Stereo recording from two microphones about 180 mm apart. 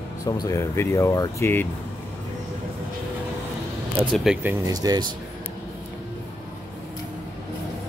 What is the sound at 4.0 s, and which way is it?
Speech, 5° right (ahead or behind).